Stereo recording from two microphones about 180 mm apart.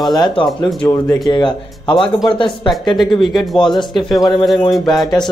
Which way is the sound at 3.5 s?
25° left (ahead or behind).